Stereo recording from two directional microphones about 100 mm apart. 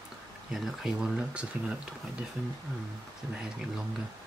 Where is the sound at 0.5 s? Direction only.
5° right (ahead or behind).